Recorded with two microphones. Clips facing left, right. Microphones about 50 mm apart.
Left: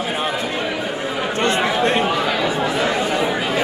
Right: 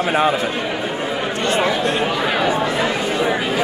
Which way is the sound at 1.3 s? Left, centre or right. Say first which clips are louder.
Left 1 dB; left.